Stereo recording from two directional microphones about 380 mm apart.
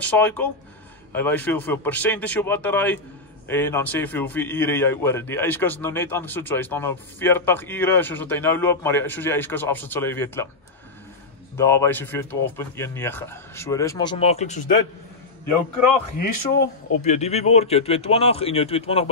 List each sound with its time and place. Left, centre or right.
0.0 s a man's voice: centre
11.5 s speech: centre
16.5 s speech: centre